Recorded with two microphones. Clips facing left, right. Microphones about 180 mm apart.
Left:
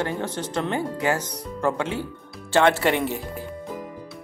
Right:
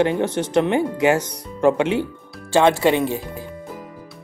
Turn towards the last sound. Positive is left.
turn(degrees=-15)  # may be behind; listen again after turning